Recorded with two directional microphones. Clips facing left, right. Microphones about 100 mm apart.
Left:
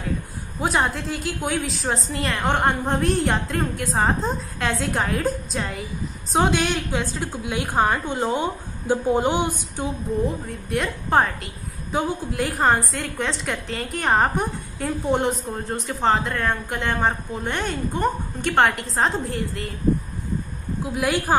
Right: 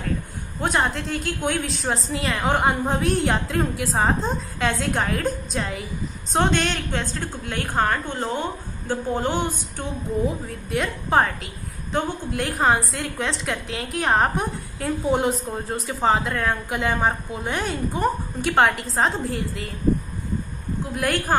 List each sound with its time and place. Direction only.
0.6 s a woman's voice: centre (ahead or behind)
9.8 s a woman's voice: centre (ahead or behind)
20.8 s a woman's voice: 5° left (ahead or behind)